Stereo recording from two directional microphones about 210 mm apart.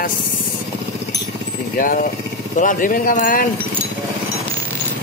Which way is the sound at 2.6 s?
40° left (ahead or behind).